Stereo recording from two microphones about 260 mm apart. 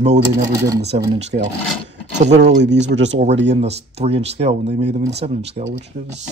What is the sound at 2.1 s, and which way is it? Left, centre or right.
Speech, right.